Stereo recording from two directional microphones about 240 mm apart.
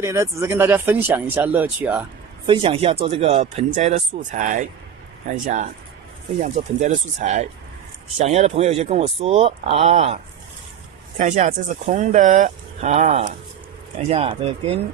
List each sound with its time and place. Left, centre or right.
0.0 s speech: centre
2.4 s speech: right